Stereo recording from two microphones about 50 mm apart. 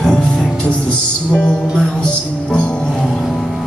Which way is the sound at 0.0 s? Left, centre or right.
Centre.